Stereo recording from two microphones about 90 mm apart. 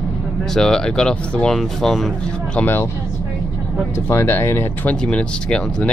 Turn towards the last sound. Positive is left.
turn(degrees=10)  # may be behind; listen again after turning